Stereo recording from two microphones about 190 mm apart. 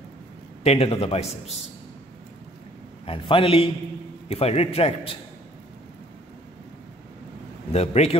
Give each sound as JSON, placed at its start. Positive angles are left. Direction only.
{"t": 0.7, "sound": "a man's voice", "side_deg": 35}
{"t": 3.1, "sound": "a man's voice", "side_deg": 30}
{"t": 7.7, "sound": "a man's voice", "side_deg": 35}